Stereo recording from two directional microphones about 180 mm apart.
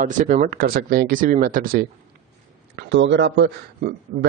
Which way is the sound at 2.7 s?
85° right.